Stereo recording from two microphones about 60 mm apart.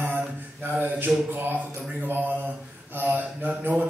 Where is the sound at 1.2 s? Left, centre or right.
Right.